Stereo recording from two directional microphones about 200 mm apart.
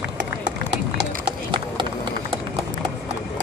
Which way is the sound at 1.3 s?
25° right (ahead or behind).